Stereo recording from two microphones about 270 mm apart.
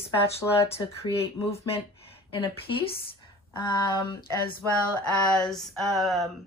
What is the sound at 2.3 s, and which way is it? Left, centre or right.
Speech, centre.